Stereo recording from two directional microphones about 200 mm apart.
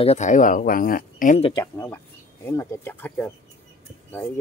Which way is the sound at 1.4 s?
20° left (ahead or behind).